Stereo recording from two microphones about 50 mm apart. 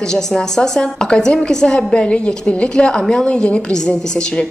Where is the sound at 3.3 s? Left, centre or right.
Centre.